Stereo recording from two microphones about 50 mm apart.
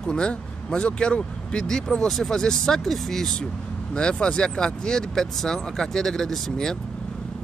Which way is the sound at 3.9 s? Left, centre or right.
Centre.